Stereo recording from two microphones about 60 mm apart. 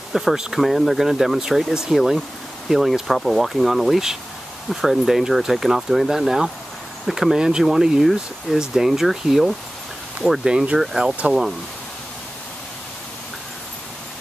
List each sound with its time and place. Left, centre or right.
0.1 s speech: centre
10.4 s speech: centre